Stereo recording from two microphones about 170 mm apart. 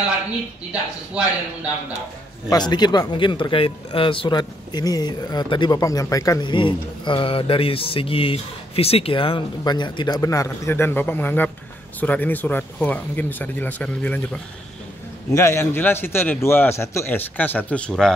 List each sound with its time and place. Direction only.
2.5 s a man's voice: 25° left (ahead or behind); by 18.1 s 5° left (ahead or behind)